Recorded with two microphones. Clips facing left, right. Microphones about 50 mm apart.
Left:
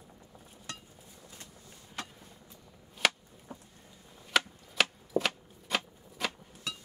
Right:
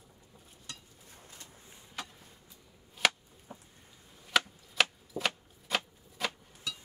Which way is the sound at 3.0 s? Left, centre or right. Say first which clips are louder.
Even; centre.